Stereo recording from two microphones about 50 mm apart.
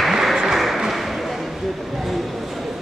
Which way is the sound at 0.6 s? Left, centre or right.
Centre.